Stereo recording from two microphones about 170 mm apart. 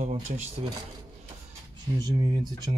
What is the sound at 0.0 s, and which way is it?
Speech, 45° right (ahead or behind).